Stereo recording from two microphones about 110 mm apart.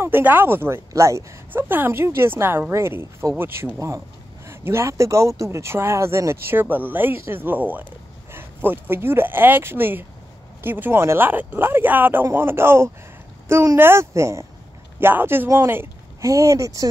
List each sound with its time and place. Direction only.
0.0 s speech: 20° right (ahead or behind)